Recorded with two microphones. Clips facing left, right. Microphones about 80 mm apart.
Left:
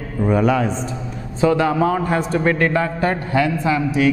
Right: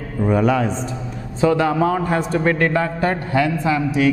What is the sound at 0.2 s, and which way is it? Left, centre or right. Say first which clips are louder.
A man's voice: even; centre.